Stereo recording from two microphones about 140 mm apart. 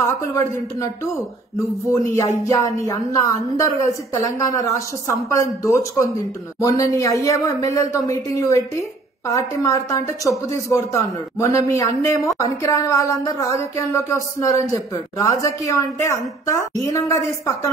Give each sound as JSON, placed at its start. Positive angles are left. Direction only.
{"t": 0.3, "sound": "speech", "side_deg": 20}
{"t": 2.4, "sound": "speech", "side_deg": 20}